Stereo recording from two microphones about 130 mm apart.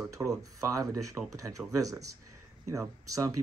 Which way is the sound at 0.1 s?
25° right (ahead or behind).